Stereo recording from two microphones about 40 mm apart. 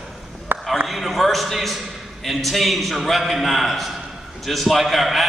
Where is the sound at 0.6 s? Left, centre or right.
Centre.